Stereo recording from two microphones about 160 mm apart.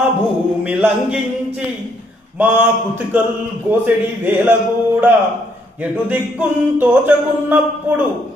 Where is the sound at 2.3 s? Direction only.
10° right (ahead or behind).